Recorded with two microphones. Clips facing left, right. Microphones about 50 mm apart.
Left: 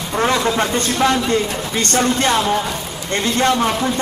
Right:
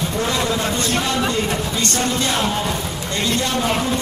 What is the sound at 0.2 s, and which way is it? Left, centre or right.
Speech, left.